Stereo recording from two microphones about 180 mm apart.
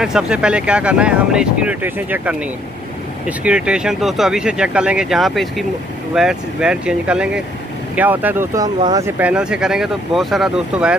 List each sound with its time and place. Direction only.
0.0 s speech: 5° right (ahead or behind)
9.2 s speech: 5° right (ahead or behind)